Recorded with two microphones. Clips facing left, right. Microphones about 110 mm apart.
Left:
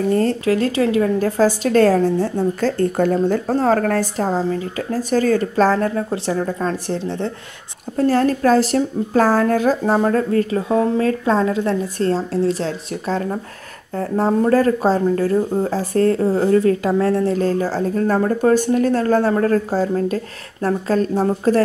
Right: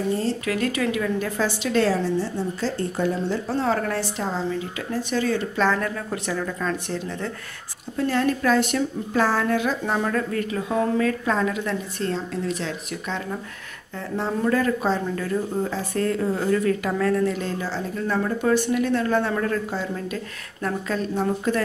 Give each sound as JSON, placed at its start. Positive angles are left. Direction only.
{"t": 0.1, "sound": "speech", "side_deg": 55}
{"t": 0.5, "sound": "a woman's voice", "side_deg": 30}
{"t": 8.0, "sound": "a woman's voice", "side_deg": 40}